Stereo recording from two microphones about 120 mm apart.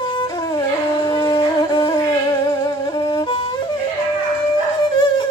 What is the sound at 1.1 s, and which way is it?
Wind instrument, 35° left (ahead or behind).